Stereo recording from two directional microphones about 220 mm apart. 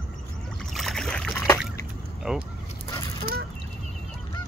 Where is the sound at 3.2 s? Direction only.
45° right (ahead or behind).